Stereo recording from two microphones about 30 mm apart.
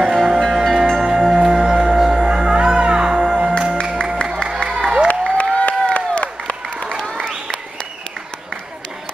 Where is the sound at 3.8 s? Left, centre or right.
Left.